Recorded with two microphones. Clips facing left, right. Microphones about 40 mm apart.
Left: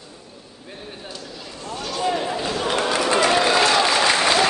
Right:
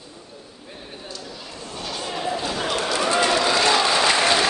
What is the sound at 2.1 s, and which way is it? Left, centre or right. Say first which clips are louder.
Basketball bounce: left 2 dB; centre.